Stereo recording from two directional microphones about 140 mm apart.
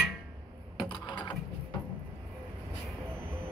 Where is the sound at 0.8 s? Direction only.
35° left (ahead or behind).